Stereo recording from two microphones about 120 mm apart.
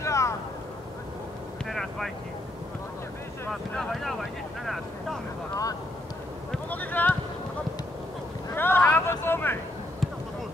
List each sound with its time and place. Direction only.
0.0 s vehicle: 25° left (ahead or behind)
1.7 s vehicle: 5° left (ahead or behind)
3.7 s boat: 5° left (ahead or behind)
5.5 s vehicle: 30° left (ahead or behind)
6.5 s a sound: 15° left (ahead or behind)
8.5 s a sound: 15° left (ahead or behind)